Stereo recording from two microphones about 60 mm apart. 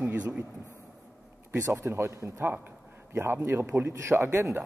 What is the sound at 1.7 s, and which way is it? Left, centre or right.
Speech, right.